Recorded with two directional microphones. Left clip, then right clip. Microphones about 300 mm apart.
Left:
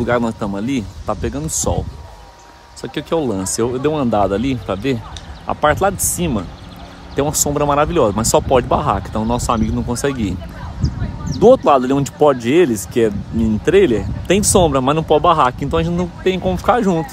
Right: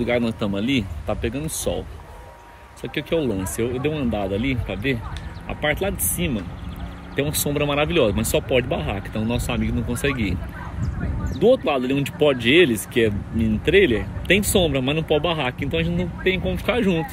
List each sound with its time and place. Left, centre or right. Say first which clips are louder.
0.0 s speech: left 5 dB; centre
2.8 s speech: left 4 dB; centre
11.6 s speech: left 9 dB; centre